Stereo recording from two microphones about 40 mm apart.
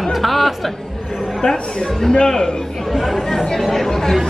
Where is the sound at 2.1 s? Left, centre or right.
Left.